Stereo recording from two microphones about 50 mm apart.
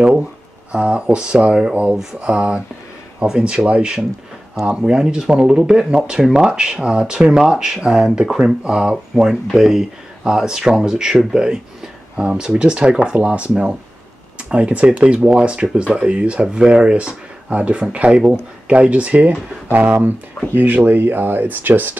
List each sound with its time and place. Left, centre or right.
0.7 s speech: right